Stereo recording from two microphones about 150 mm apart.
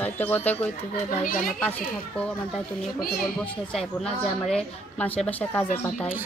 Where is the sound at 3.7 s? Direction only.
5° left (ahead or behind).